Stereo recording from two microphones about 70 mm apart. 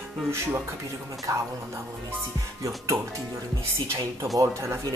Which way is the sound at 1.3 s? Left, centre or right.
Right.